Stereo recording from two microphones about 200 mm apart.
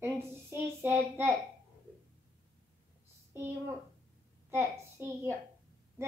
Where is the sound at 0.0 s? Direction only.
10° right (ahead or behind).